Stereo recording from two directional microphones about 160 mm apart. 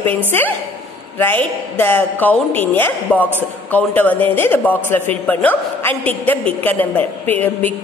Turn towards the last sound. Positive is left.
turn(degrees=10)  # may be behind; listen again after turning